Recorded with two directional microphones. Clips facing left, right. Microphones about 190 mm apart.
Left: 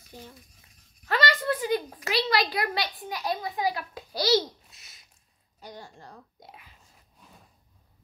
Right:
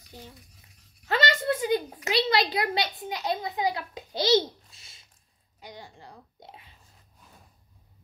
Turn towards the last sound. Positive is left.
turn(degrees=-25)  # may be behind; listen again after turning